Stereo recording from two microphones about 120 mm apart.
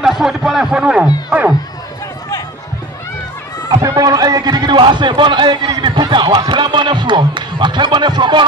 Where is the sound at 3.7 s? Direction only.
30° right (ahead or behind).